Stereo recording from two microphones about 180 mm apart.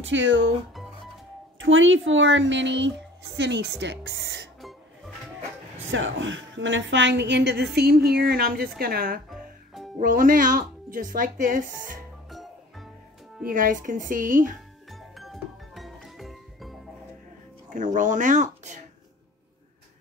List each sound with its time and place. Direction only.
0.0 s a woman's voice: 90° right
1.6 s a woman's voice: 90° right; by 4.5 s 65° right (ahead or behind)
4.6 s music: centre (ahead or behind)
5.9 s a woman's voice: 90° right; by 12.0 s 50° right (ahead or behind)
12.3 s music: centre (ahead or behind)
13.5 s speech: 45° right (ahead or behind)
14.9 s music: centre (ahead or behind)
17.6 s speech: 45° right (ahead or behind)